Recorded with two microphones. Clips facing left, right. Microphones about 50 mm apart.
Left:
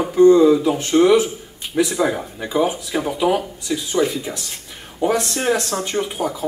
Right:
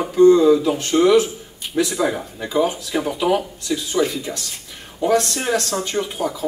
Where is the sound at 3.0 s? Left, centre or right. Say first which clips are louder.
Left 1 dB; centre.